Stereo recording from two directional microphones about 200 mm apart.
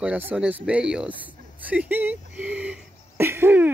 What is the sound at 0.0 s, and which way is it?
Speech, 10° right (ahead or behind).